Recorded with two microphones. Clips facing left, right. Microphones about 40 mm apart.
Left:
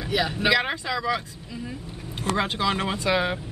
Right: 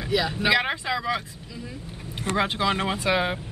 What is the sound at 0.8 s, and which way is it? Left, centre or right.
Speech, centre.